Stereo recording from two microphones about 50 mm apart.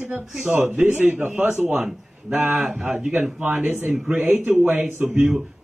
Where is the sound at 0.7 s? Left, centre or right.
Right.